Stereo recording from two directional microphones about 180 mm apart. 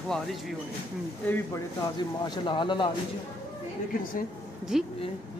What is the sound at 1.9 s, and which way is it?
Speech, 25° left (ahead or behind).